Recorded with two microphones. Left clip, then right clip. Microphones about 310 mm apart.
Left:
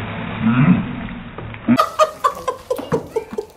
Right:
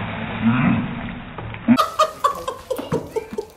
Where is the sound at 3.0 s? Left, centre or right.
Centre.